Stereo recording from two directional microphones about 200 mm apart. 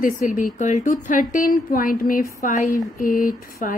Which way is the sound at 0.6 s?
40° left (ahead or behind).